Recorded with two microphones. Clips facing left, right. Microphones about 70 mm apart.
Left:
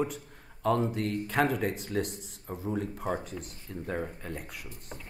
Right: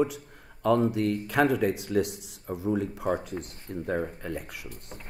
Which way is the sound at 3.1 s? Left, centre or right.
Right.